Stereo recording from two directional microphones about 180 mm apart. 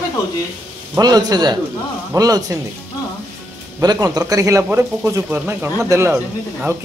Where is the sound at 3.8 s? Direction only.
20° right (ahead or behind).